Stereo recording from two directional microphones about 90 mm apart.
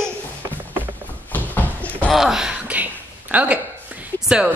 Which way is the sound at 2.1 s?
5° right (ahead or behind).